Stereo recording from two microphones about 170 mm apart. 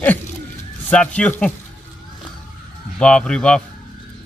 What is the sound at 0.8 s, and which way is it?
Speech, 10° left (ahead or behind).